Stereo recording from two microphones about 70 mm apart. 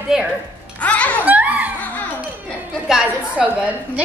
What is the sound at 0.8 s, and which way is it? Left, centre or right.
Speech, centre.